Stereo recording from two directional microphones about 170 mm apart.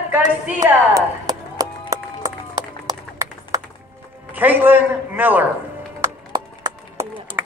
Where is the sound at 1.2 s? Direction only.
20° right (ahead or behind).